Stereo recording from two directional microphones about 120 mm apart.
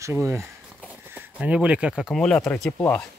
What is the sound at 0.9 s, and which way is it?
Speech, 15° right (ahead or behind).